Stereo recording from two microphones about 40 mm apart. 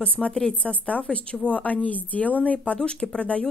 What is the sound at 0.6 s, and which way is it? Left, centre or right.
A woman's voice, left.